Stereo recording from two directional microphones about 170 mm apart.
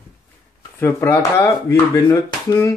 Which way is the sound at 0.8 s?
10° left (ahead or behind).